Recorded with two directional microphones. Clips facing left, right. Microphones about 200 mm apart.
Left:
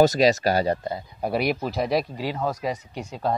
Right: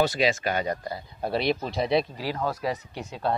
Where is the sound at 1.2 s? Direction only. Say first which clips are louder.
Left 2 dB; 10° left (ahead or behind).